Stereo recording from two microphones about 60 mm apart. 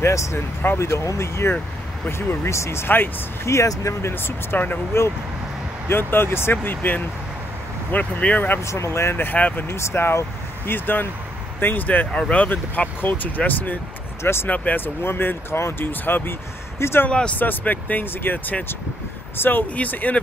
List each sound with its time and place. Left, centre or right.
0.0 s speech: left
3.5 s speech: left
4.0 s speech: left
4.9 s speech: left
8.6 s speech: left
9.1 s speech: left
9.8 s speech: left
10.7 s speech: left
12.1 s speech: centre
12.4 s speech: left
14.2 s speech: left
14.5 s speech: left
15.0 s speech: left
17.4 s speech: left